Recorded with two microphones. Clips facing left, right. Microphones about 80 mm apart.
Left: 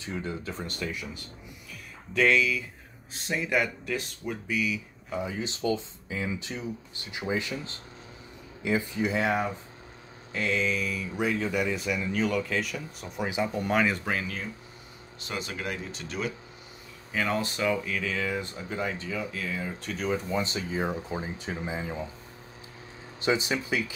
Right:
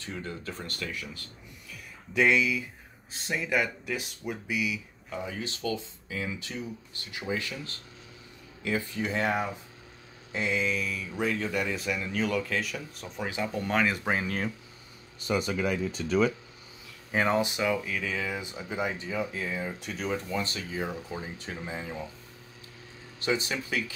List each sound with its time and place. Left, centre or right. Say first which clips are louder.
0.0 s speech: left 3 dB; centre
2.1 s speech: left 1 dB; centre
3.1 s speech: left 1 dB; centre
5.1 s speech: left 3 dB; centre
9.1 s speech: left 1 dB; centre
10.3 s a sound: left 1 dB; centre
10.6 s speech: left 1 dB; centre
14.2 s speech: right 4 dB; right
17.1 s speech: right 3 dB; right
17.4 s speech: even; centre
19.8 s speech: left 6 dB; centre
20.2 s speech: left 3 dB; centre
23.2 s speech: left 3 dB; centre